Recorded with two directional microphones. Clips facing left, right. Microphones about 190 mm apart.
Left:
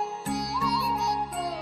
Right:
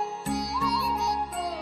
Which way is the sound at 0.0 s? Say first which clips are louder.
Right 1 dB; centre (ahead or behind).